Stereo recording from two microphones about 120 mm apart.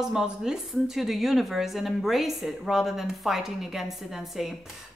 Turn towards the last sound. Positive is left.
turn(degrees=0)  # may be behind; listen again after turning